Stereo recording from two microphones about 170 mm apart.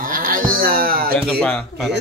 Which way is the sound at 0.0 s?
55° right (ahead or behind).